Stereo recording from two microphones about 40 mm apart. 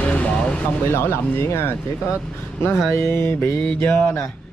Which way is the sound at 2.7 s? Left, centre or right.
Left.